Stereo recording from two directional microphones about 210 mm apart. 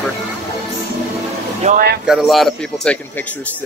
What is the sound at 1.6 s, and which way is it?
Speech, 45° right (ahead or behind).